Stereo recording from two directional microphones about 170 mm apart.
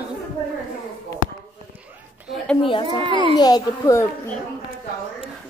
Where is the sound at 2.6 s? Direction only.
30° left (ahead or behind).